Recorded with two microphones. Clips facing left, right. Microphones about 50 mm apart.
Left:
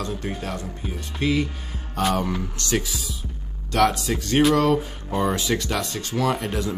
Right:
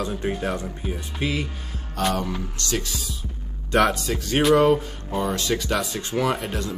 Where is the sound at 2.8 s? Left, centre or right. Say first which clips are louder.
Even; centre.